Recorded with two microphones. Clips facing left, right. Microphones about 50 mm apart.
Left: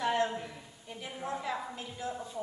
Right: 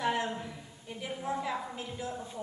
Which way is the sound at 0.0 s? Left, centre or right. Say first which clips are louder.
Left 1 dB; centre.